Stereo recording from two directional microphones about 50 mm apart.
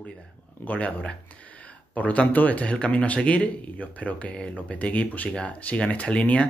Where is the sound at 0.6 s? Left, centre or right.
Left.